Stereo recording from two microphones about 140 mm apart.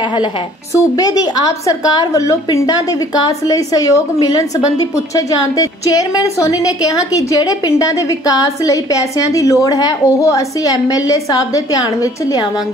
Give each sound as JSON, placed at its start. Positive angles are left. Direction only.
{"t": 0.7, "sound": "a woman's voice", "side_deg": 25}